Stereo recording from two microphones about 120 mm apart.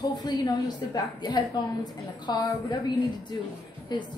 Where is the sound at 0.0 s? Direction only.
35° left (ahead or behind).